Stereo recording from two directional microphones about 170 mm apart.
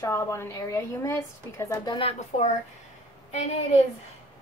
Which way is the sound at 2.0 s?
40° left (ahead or behind).